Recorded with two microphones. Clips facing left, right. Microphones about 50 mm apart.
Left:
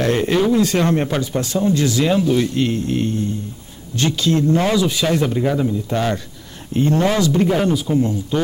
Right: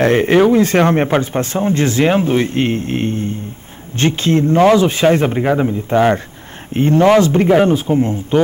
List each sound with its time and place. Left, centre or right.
0.0 s speech: right